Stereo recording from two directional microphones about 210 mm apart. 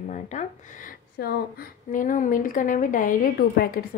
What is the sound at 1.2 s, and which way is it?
A woman's voice, 45° left (ahead or behind).